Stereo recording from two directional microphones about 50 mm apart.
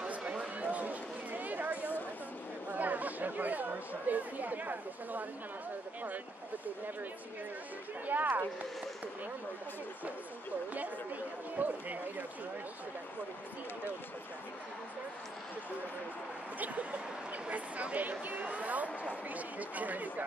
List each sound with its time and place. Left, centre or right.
0.0 s a sound: right
8.1 s speech: right
11.5 s speech: right
16.5 s speech: right